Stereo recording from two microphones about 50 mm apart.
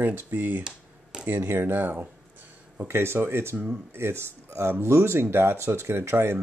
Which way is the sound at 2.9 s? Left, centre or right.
Right.